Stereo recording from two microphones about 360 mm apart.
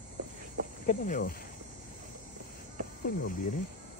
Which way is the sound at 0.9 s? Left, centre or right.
Left.